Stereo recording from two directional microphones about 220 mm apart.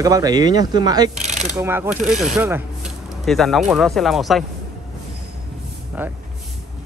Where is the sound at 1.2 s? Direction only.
30° right (ahead or behind).